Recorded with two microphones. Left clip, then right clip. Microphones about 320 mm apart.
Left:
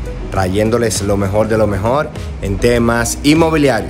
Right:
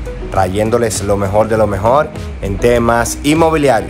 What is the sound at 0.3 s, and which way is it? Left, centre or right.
Speech, centre.